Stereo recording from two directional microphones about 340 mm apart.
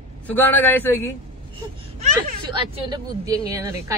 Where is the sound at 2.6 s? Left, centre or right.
Centre.